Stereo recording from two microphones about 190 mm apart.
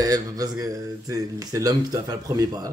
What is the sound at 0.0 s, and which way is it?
Speech, 20° right (ahead or behind).